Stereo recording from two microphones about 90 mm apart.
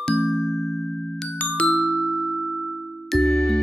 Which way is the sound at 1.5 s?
5° left (ahead or behind).